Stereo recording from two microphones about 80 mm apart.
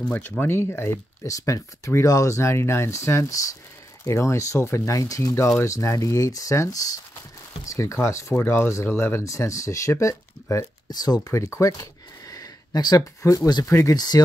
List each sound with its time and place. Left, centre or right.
0.4 s speech: left
10.9 s speech: left
11.3 s a sound: left
13.8 s speech: left